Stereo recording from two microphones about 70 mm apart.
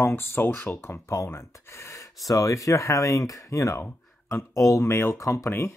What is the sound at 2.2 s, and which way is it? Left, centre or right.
Speech, left.